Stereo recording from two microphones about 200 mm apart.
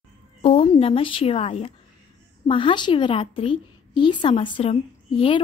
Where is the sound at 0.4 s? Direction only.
30° left (ahead or behind).